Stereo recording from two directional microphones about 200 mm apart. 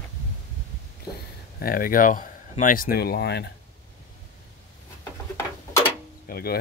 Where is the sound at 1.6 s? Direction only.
45° left (ahead or behind).